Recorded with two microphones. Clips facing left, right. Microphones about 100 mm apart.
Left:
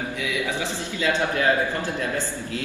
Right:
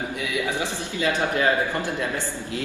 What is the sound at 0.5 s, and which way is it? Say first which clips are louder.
A man's voice: even; 15° right (ahead or behind).